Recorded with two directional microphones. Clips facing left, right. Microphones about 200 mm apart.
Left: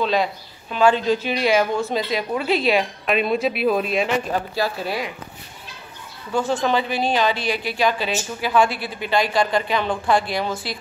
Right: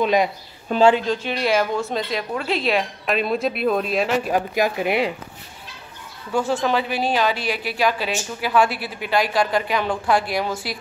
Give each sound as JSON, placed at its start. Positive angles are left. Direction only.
{"t": 0.0, "sound": "speech", "side_deg": -15}
{"t": 0.7, "sound": "speech", "side_deg": -45}
{"t": 1.0, "sound": "a woman's voice", "side_deg": 5}
{"t": 4.3, "sound": "speech", "side_deg": -15}
{"t": 6.3, "sound": "a woman's voice", "side_deg": -5}